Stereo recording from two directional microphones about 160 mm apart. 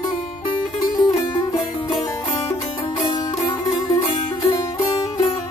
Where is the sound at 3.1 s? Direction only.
25° left (ahead or behind).